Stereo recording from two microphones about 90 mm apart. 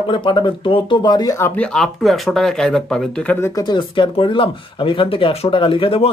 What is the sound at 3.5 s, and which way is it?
Speech, 55° left (ahead or behind).